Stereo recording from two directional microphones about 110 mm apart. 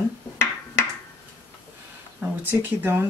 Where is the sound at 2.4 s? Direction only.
15° right (ahead or behind).